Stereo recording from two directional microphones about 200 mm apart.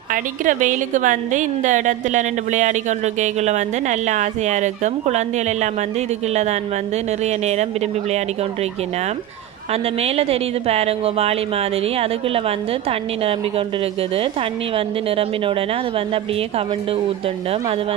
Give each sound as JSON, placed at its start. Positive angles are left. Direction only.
{"t": 0.1, "sound": "a woman's voice", "side_deg": -40}
{"t": 7.2, "sound": "a woman's voice", "side_deg": -35}
{"t": 10.0, "sound": "speech", "side_deg": -30}
{"t": 15.0, "sound": "speech", "side_deg": -30}